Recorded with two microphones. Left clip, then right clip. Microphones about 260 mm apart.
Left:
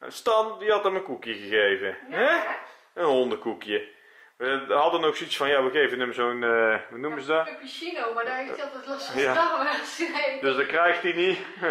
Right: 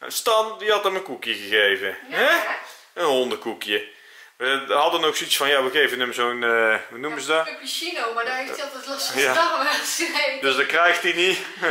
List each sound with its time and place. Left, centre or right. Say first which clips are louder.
0.2 s a man's voice: right 3 dB; centre